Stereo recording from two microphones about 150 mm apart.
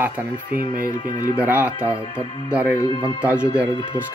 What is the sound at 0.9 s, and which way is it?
Speech, 30° left (ahead or behind).